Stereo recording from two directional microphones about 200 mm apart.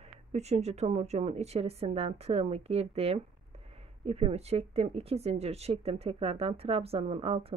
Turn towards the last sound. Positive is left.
turn(degrees=-30)  # may be behind; listen again after turning